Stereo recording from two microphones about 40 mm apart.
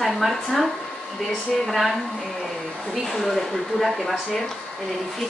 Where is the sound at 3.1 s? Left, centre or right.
Centre.